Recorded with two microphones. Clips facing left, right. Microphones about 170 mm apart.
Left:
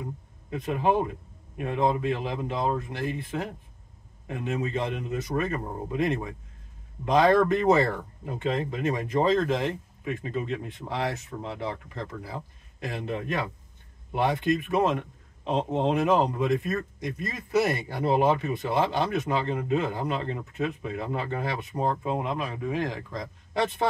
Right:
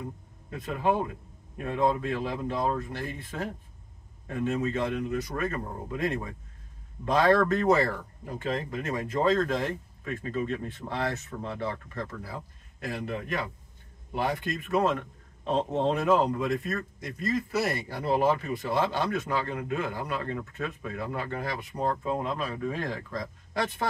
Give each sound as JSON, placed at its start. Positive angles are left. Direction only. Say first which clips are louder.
{"t": 0.5, "sound": "speech", "louder": "left 2 dB", "side_deg": 20}